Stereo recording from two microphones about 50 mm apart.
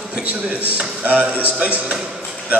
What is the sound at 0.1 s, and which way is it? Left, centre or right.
A man's voice, right.